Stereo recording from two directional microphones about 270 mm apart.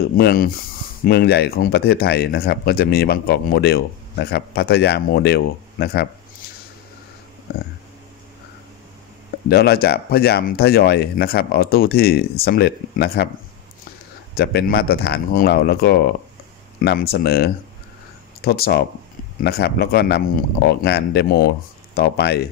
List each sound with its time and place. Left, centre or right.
0.2 s speech: left
9.5 s speech: left
14.3 s speech: left